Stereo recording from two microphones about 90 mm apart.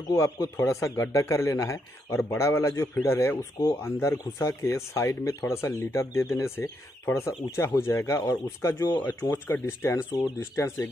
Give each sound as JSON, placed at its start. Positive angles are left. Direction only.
{"t": 0.1, "sound": "speech", "side_deg": 30}